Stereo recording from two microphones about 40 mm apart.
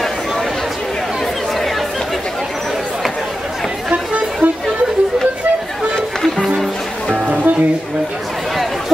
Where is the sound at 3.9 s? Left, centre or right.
Right.